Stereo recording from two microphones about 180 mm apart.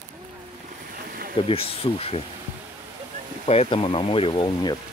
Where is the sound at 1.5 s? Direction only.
30° left (ahead or behind).